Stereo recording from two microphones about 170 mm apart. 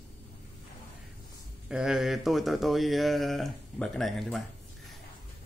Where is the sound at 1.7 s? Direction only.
5° right (ahead or behind).